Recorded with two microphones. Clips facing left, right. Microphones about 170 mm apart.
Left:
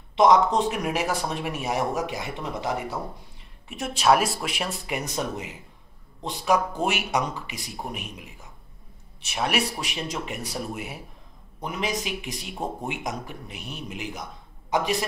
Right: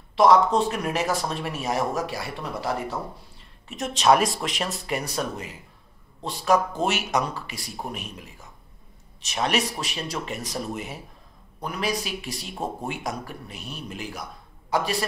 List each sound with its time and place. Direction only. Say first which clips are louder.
0.1 s speech: right 1 dB; 20° left (ahead or behind)